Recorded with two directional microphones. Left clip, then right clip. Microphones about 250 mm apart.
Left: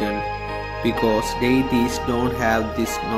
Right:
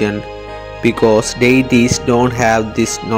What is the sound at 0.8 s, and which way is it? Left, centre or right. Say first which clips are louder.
Speech: right 9 dB; right.